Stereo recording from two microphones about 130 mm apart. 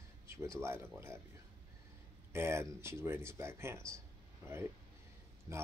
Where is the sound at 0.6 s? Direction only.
20° right (ahead or behind).